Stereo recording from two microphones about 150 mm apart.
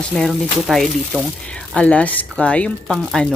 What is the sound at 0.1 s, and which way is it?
Speech, centre (ahead or behind).